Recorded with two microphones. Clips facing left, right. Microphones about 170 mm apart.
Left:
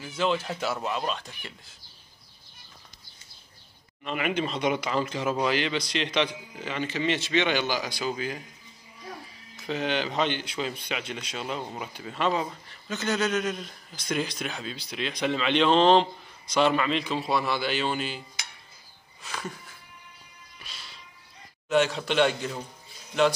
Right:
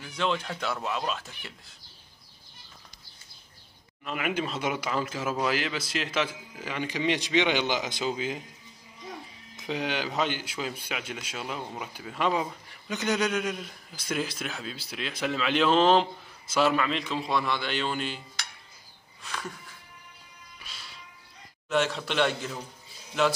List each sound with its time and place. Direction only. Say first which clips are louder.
0.0 s a man's voice: left 2 dB; 5° left (ahead or behind)
4.0 s a man's voice: left 2 dB; 5° right (ahead or behind); by 8.5 s 20° right (ahead or behind)
9.6 s a man's voice: left 2 dB; 15° right (ahead or behind); by 18.2 s 5° left (ahead or behind)
19.2 s a man's voice: left 1 dB; centre (ahead or behind)
21.6 s a man's voice: left 3 dB; centre (ahead or behind)